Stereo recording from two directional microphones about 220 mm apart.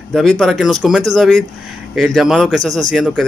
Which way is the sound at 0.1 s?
Centre (ahead or behind).